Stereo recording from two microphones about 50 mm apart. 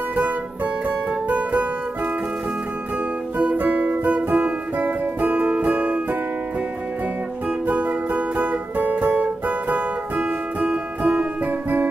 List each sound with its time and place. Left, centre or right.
0.8 s music: right
3.3 s music: right
7.4 s music: right